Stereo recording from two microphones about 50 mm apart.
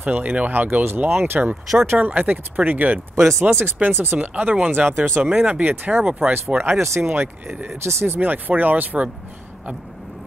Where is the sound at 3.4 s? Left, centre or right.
Right.